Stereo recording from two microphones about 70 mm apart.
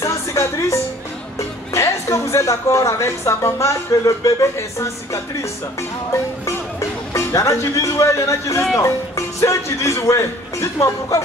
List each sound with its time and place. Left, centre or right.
0.0 s music: left
1.7 s a woman's voice: left
7.2 s a woman's voice: left